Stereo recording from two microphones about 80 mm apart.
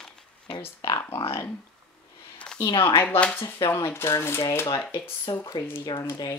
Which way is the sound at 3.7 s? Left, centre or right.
Left.